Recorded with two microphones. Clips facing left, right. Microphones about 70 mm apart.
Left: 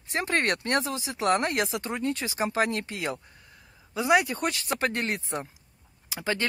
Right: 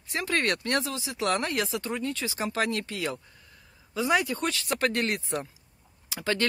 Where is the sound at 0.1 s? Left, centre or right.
Left.